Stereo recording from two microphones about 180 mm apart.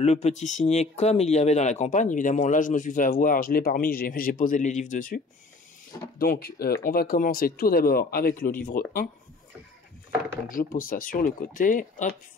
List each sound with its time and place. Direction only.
0.0 s speech: 35° left (ahead or behind); by 9.1 s 50° left (ahead or behind)
10.5 s speech: 50° left (ahead or behind)